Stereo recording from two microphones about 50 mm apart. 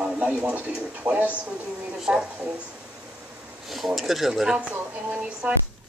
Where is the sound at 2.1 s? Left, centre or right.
Right.